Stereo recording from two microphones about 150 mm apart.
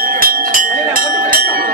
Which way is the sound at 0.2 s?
70° right (ahead or behind).